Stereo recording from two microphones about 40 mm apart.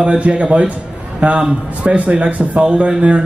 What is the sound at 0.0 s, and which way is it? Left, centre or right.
Speech, right.